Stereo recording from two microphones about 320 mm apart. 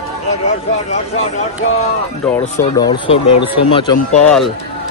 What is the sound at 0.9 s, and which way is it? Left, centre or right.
Speech, left.